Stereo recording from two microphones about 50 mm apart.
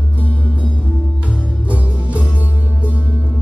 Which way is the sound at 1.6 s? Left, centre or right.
Right.